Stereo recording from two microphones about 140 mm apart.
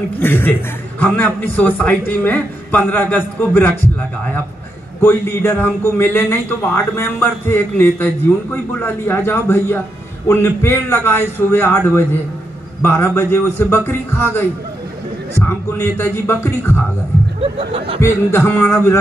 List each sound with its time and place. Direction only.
0.2 s a man's voice: 15° left (ahead or behind)
5.0 s a man's voice: 15° left (ahead or behind)
17.4 s speech: 45° right (ahead or behind)
18.0 s a man's voice: 15° left (ahead or behind)